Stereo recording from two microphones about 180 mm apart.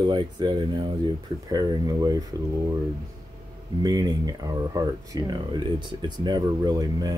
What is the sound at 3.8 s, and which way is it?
Speech, 20° right (ahead or behind).